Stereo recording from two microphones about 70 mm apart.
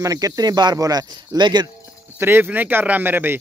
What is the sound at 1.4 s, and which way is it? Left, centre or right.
Speech, right.